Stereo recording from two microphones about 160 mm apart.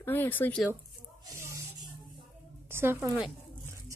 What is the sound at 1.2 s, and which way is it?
Snake, 20° right (ahead or behind).